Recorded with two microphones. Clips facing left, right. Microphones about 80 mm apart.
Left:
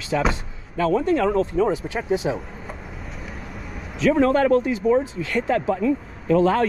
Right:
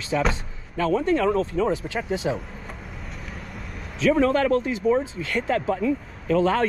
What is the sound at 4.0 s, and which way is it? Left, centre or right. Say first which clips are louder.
A man's voice: left 2 dB; left.